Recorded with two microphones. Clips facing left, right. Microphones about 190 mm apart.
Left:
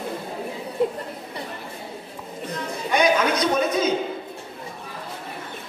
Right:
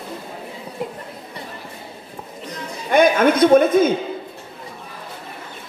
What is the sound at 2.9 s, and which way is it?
Speech, 50° right (ahead or behind).